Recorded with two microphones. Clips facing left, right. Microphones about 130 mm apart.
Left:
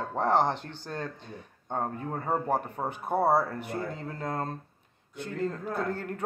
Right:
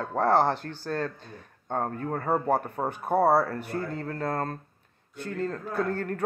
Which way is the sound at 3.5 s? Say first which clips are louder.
Right 2 dB; 15° left (ahead or behind).